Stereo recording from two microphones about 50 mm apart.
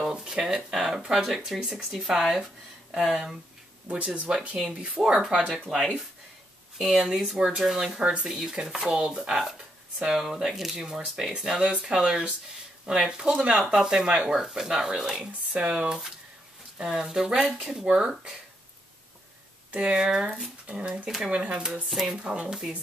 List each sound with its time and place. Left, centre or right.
0.1 s a sound: centre
0.4 s speech: centre
3.9 s speech: right
5.0 s speech: centre
8.0 s speech: right
15.5 s speech: right
19.8 s speech: centre
21.8 s speech: centre
22.2 s speech: centre